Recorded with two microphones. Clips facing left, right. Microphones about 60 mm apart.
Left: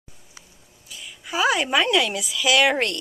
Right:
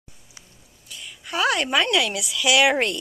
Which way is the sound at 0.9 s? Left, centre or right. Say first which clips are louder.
Left 1 dB; centre.